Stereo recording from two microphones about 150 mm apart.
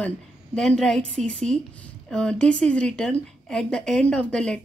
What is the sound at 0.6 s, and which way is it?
A woman's voice, 5° left (ahead or behind).